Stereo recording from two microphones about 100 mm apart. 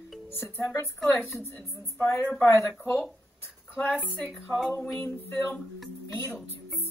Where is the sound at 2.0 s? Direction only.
20° left (ahead or behind).